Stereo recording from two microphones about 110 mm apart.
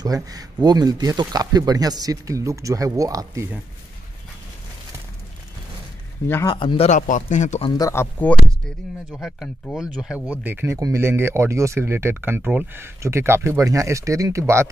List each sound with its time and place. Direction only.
0.0 s speech: 35° right (ahead or behind)
6.4 s speech: 45° left (ahead or behind)
6.9 s speech: 90° left
7.9 s speech: 20° left (ahead or behind)
9.1 s speech: centre (ahead or behind); by 10.7 s 15° right (ahead or behind)
10.7 s speech: 25° right (ahead or behind)